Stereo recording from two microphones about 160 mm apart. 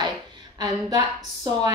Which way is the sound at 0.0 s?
25° right (ahead or behind).